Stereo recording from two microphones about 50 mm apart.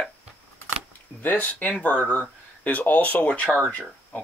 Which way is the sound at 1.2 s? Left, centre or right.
Left.